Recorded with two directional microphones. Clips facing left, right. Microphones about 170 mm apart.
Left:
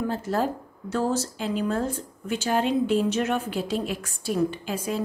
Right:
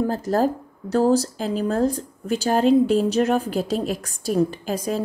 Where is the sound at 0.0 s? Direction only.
40° right (ahead or behind).